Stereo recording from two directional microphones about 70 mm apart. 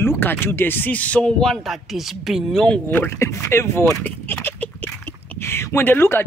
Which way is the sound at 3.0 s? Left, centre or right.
Left.